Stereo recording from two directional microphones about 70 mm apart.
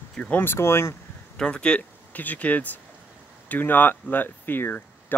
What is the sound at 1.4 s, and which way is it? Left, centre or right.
Speech, centre.